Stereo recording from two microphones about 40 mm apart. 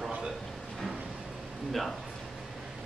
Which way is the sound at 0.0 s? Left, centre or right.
Centre.